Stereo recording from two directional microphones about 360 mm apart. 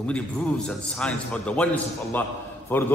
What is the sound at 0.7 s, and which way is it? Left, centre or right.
A man's voice, centre.